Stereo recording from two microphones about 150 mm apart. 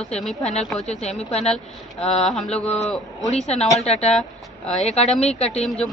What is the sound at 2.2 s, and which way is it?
Speech, 5° left (ahead or behind).